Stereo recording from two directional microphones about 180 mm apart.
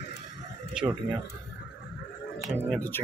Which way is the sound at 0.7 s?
5° right (ahead or behind).